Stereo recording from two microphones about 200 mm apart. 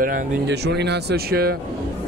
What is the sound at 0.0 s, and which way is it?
Speech, 50° right (ahead or behind).